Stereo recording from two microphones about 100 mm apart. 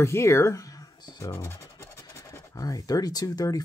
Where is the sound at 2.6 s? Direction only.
40° left (ahead or behind).